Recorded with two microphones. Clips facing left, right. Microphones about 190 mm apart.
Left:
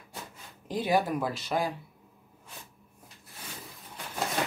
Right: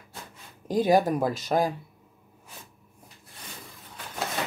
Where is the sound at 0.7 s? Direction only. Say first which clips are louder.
Right 6 dB; 45° right (ahead or behind).